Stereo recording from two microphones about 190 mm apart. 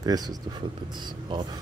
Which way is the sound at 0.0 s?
20° right (ahead or behind).